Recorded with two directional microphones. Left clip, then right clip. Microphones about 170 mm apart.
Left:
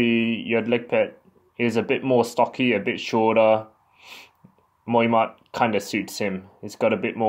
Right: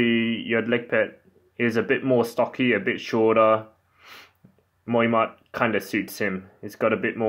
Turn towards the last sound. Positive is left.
turn(degrees=30)  # may be behind; listen again after turning